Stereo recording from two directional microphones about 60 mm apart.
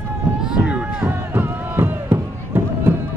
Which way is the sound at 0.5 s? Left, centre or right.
Centre.